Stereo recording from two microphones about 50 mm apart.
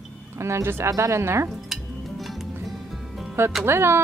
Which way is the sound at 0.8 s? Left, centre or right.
Right.